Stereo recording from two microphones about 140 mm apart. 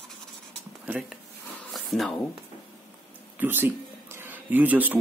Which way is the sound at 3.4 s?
15° right (ahead or behind).